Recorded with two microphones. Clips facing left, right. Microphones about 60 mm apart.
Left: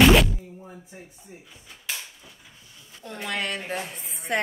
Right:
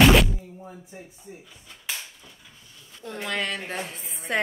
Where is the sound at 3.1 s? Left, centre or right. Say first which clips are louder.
Right 1 dB; centre.